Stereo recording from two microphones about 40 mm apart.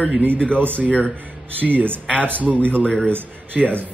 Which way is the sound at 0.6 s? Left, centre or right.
Right.